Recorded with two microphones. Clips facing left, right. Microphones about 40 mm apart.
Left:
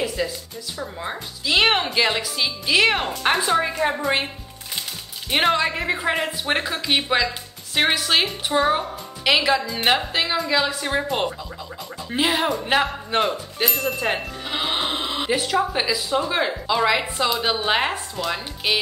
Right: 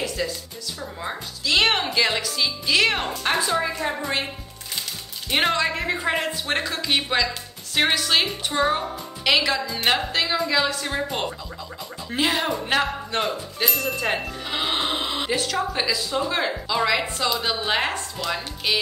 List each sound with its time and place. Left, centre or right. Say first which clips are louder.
0.2 s music: right 1 dB; centre
0.7 s speech: left 2 dB; centre
3.8 s a woman's voice: left 5 dB; left
5.3 s speech: left 2 dB; centre